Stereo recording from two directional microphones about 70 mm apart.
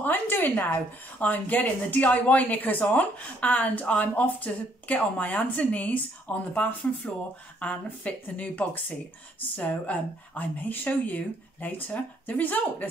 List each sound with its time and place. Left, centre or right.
0.0 s speech: left